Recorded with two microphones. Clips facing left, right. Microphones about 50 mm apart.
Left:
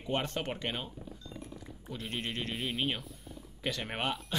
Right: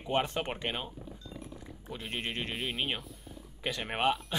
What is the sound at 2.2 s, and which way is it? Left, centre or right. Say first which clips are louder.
Speech: right 1 dB; centre.